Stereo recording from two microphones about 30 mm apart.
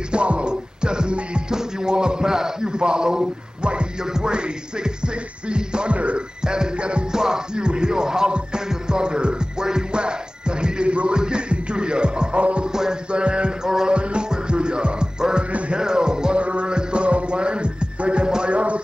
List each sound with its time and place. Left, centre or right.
0.1 s music: right
1.5 s a man's voice: right
4.1 s music: right
5.9 s speech: right
6.4 s music: right
6.8 s music: right
7.1 s music: right
13.1 s mantra: right
13.7 s music: right
13.9 s music: right
16.3 s music: right